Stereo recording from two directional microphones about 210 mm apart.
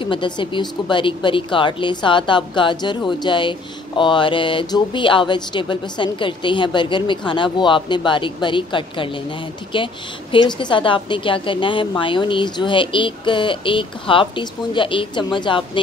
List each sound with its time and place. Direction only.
0.0 s speech: 25° left (ahead or behind)